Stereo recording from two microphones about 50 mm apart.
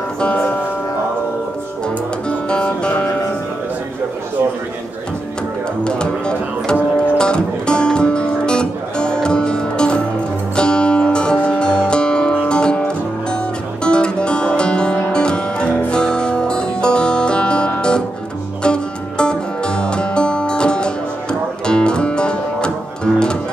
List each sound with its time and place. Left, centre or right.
0.3 s music: left
2.2 s music: centre
5.9 s music: centre